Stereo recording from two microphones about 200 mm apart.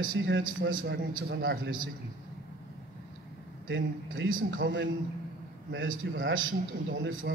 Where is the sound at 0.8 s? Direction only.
60° right (ahead or behind).